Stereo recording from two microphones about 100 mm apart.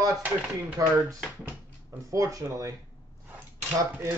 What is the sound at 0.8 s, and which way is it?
Speech, 35° right (ahead or behind).